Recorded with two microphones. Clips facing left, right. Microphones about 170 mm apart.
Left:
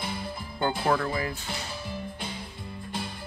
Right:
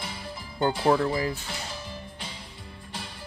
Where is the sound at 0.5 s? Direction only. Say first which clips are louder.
Right 3 dB; 20° right (ahead or behind).